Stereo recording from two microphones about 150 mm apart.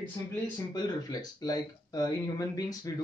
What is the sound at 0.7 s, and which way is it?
Speech, 25° left (ahead or behind).